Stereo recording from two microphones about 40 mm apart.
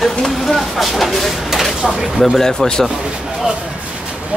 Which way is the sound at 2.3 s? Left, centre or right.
Centre.